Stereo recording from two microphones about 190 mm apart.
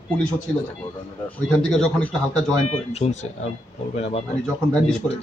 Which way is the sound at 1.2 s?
5° left (ahead or behind).